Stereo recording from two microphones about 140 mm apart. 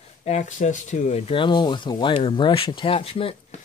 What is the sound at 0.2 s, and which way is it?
Speech, 60° left (ahead or behind).